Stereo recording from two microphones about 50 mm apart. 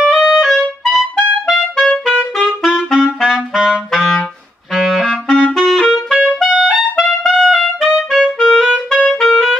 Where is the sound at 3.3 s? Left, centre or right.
Centre.